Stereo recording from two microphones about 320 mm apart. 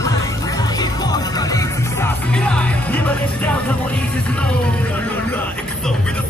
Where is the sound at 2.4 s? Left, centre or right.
Centre.